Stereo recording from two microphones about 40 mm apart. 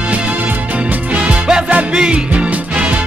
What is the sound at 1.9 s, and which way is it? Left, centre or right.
Speech, centre.